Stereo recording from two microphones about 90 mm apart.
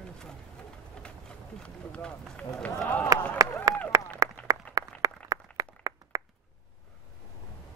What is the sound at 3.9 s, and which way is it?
Run, 40° right (ahead or behind).